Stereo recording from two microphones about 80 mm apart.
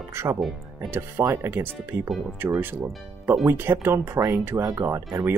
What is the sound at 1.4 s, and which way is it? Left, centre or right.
Speech, right.